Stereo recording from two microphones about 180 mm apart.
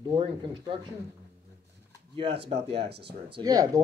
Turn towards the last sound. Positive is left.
turn(degrees=-20)  # may be behind; listen again after turning